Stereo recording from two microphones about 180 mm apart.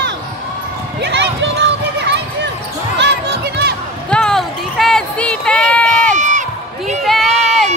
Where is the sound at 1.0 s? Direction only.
80° right.